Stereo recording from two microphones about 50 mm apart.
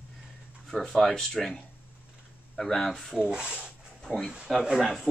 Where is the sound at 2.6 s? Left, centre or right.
Centre.